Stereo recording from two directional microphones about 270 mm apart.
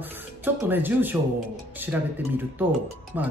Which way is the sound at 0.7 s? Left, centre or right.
Centre.